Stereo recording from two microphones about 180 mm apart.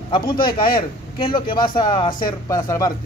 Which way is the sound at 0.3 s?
25° left (ahead or behind).